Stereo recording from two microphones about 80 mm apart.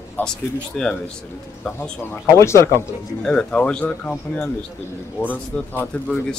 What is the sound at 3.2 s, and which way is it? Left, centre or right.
Speech, centre.